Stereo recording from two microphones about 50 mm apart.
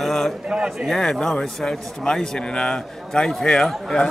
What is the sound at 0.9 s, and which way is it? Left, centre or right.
A man's voice, centre.